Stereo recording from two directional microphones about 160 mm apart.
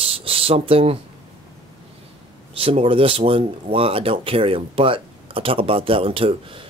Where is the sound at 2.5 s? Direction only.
35° right (ahead or behind).